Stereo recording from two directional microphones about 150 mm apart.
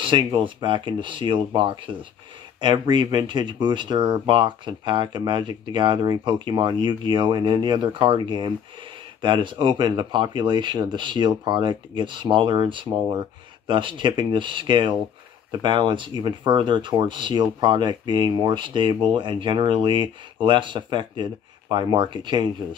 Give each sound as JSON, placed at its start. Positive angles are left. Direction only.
{"t": 0.0, "sound": "speech", "side_deg": -30}